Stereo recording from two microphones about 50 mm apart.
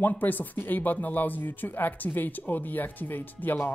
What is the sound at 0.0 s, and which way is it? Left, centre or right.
Speech, left.